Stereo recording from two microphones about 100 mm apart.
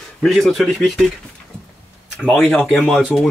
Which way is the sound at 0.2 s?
Centre (ahead or behind).